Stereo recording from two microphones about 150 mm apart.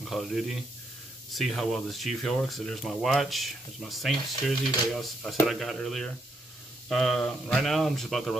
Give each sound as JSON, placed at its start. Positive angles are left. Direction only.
{"t": 0.0, "sound": "speech", "side_deg": 0}